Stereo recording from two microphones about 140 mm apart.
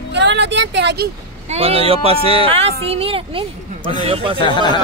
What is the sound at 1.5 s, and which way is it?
Speech, 45° right (ahead or behind).